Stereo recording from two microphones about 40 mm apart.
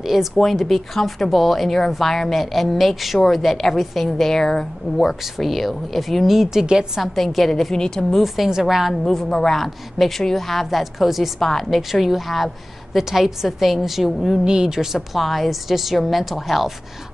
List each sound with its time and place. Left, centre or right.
0.0 s a woman's voice: centre
5.0 s a woman's voice: centre
6.6 s a woman's voice: right
7.0 s a woman's voice: centre
7.7 s a woman's voice: centre
8.5 s speech: centre
8.9 s a woman's voice: centre
11.3 s a woman's voice: centre
11.7 s a woman's voice: centre
14.4 s speech: right
15.1 s a woman's voice: centre